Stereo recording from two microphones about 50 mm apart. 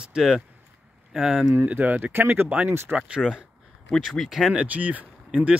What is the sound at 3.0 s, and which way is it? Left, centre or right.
Speech, centre.